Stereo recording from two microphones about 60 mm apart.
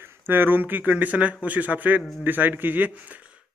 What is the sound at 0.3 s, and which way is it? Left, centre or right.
Speech, right.